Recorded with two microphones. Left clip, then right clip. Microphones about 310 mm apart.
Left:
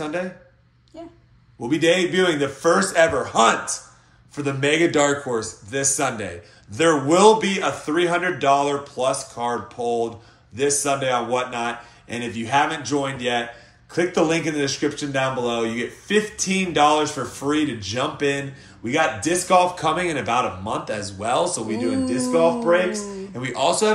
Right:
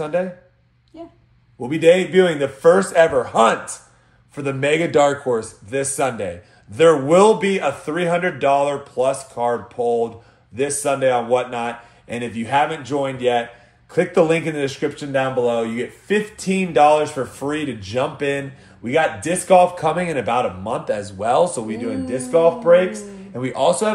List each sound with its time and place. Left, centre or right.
0.0 s speech: centre
1.0 s speech: centre
1.6 s speech: right